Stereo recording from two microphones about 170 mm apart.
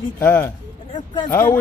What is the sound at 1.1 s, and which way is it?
Speech, 25° left (ahead or behind).